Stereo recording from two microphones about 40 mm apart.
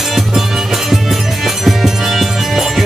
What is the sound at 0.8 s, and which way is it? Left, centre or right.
Music, centre.